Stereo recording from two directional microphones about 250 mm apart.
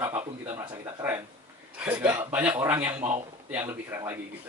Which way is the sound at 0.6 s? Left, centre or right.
Centre.